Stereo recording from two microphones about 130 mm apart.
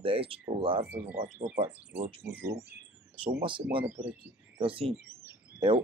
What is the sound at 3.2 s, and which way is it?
Speech, 40° right (ahead or behind).